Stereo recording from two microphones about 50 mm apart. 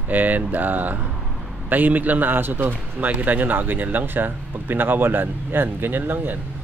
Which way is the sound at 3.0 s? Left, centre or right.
Right.